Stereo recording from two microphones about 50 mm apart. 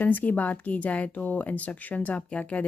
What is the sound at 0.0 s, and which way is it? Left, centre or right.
A woman's voice, left.